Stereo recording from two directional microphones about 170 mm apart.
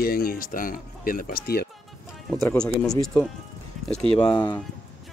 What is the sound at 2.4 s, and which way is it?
Speech, 5° left (ahead or behind).